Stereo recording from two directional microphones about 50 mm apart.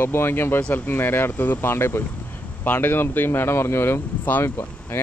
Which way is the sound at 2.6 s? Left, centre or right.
Left.